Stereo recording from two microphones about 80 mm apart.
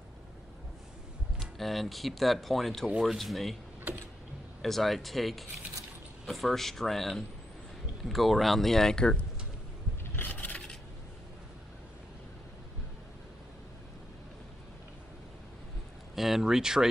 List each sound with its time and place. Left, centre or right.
1.4 s speech: centre
4.6 s speech: centre
10.1 s scrape: left
16.2 s speech: centre